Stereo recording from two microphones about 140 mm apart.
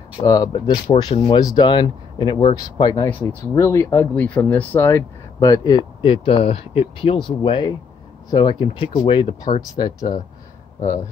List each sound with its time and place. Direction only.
0.2 s speech: 25° left (ahead or behind)
0.5 s speech: 40° left (ahead or behind)
3.1 s speech: 15° left (ahead or behind); by 10.1 s 30° left (ahead or behind)